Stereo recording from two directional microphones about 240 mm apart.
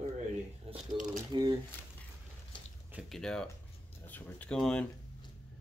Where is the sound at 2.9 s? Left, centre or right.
Centre.